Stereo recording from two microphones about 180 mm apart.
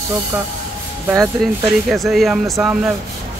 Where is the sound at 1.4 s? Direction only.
Centre (ahead or behind).